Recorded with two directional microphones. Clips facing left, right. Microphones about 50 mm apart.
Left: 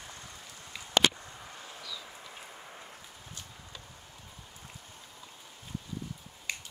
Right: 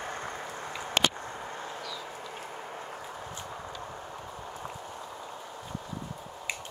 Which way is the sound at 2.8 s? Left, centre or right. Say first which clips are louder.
Right 10 dB; right.